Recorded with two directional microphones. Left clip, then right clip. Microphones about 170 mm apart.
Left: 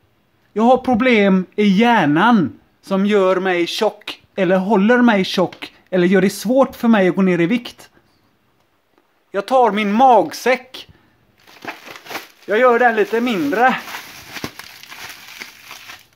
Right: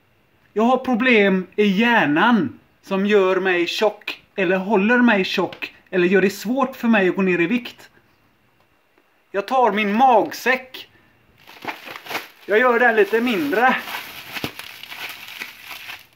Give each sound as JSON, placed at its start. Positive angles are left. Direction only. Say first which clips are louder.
{"t": 0.6, "sound": "speech", "louder": "left 4 dB", "side_deg": 55}
{"t": 9.3, "sound": "speech", "louder": "left 3 dB", "side_deg": 55}
{"t": 11.6, "sound": "a sound", "louder": "right 1 dB", "side_deg": 5}
{"t": 12.4, "sound": "speech", "louder": "left 3 dB", "side_deg": 55}